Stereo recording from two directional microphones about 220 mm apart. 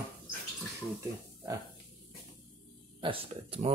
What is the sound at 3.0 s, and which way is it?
Speech, 25° right (ahead or behind).